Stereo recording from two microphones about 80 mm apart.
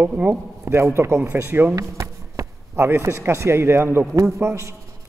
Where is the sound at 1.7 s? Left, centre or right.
Right.